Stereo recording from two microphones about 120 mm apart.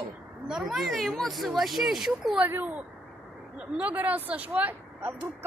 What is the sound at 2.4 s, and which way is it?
Speech, 15° right (ahead or behind).